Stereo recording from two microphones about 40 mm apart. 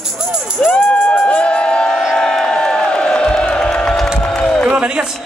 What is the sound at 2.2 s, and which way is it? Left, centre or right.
Music, centre.